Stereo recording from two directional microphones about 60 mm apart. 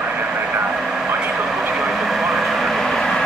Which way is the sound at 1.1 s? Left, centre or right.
Right.